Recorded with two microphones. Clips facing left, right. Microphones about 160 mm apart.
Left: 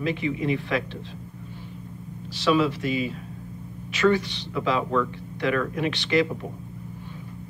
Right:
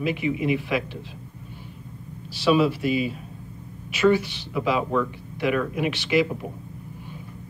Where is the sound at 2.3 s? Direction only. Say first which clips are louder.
Right 2 dB; 10° right (ahead or behind).